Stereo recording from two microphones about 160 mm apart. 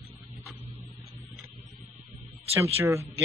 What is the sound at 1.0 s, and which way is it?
Mains hum, centre (ahead or behind).